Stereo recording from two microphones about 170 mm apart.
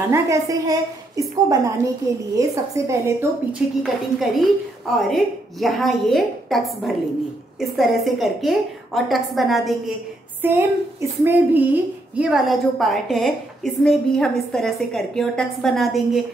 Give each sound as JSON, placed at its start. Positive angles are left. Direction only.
{"t": 0.1, "sound": "a woman's voice", "side_deg": -20}
{"t": 3.5, "sound": "a woman's voice", "side_deg": 0}
{"t": 10.4, "sound": "a woman's voice", "side_deg": -15}